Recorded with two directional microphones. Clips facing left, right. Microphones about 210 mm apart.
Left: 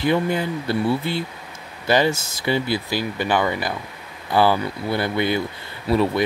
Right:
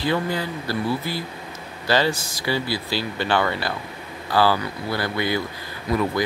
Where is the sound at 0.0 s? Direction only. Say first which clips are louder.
Left 3 dB; 20° left (ahead or behind).